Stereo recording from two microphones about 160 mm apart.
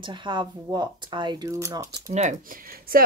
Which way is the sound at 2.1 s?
55° right (ahead or behind).